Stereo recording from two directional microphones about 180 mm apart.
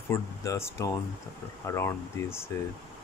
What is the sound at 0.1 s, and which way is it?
Speech, 15° left (ahead or behind).